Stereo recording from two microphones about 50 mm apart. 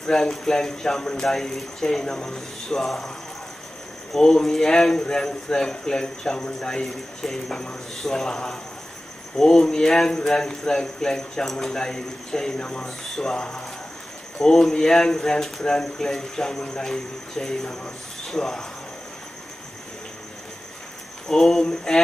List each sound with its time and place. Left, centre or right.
0.0 s speech: centre
4.1 s speech: centre
12.8 s speech: centre
13.3 s speech: centre
21.3 s speech: centre